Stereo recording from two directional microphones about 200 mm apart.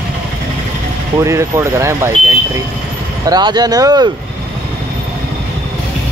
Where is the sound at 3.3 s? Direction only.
20° right (ahead or behind).